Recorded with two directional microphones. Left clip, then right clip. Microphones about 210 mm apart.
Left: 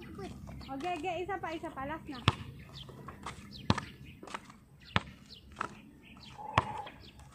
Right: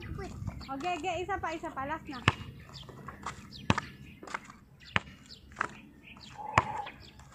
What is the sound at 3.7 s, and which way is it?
Walk, 5° right (ahead or behind).